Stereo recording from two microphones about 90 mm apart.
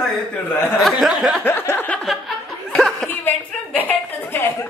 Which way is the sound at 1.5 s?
25° left (ahead or behind).